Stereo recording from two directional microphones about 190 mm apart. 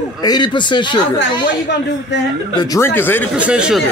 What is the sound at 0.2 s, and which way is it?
Speech, 20° left (ahead or behind).